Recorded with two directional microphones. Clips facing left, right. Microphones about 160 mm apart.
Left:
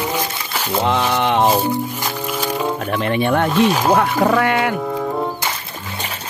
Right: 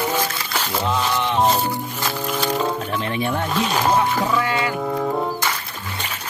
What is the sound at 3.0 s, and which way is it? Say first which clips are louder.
Speech: left 10 dB; 65° left (ahead or behind).